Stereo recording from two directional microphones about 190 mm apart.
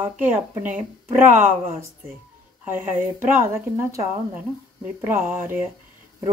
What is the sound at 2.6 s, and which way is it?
Speech, 10° right (ahead or behind).